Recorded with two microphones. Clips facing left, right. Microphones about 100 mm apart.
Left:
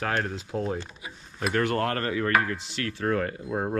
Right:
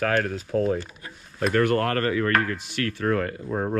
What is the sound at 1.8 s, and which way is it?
Speech, 55° right (ahead or behind).